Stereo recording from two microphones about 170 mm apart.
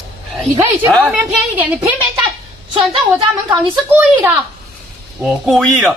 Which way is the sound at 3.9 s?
10° right (ahead or behind).